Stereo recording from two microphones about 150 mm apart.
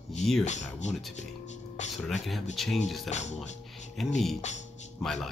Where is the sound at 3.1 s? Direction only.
50° left (ahead or behind).